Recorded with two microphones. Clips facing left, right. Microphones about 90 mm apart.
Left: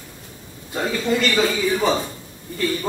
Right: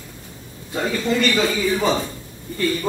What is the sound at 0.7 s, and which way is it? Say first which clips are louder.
Speech: right 1 dB; 15° left (ahead or behind).